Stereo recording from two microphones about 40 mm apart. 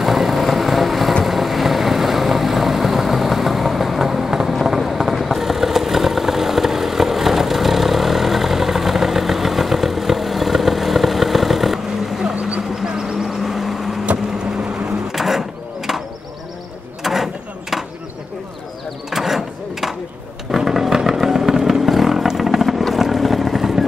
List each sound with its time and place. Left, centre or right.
0.0 s vehicle: centre
4.6 s run: centre
5.1 s vehicle: centre
12.4 s vehicle: right
12.8 s vehicle: centre
14.6 s a sound: centre
15.1 s a sound: centre
17.0 s mechanisms: centre
19.0 s a sound: centre
20.5 s vehicle: centre